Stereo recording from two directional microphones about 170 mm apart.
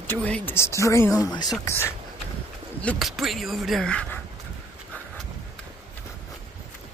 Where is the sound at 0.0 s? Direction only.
10° left (ahead or behind).